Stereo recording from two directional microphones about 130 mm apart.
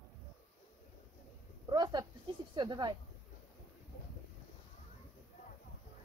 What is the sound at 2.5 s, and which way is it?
Speech, 35° right (ahead or behind).